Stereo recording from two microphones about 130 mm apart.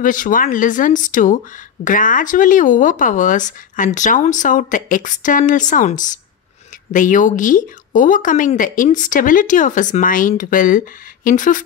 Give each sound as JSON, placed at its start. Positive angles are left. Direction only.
{"t": 0.0, "sound": "speech", "side_deg": 90}